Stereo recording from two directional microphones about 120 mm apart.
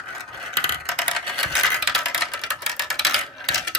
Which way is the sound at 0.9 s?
Centre (ahead or behind).